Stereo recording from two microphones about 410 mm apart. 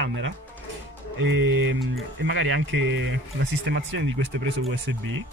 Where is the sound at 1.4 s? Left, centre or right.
Right.